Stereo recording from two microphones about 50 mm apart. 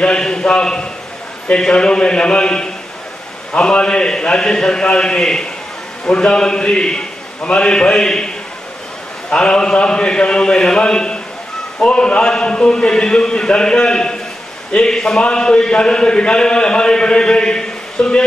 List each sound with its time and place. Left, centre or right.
0.0 s a man's voice: centre
9.3 s a man's voice: centre